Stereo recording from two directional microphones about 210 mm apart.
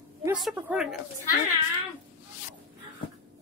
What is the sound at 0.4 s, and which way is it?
Speech, 5° right (ahead or behind).